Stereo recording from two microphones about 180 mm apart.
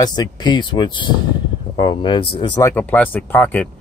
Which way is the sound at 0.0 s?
20° left (ahead or behind).